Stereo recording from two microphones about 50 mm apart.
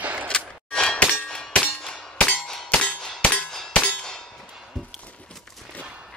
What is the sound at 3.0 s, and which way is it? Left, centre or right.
Clang, centre.